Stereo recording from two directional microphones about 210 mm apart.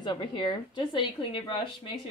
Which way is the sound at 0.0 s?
20° left (ahead or behind).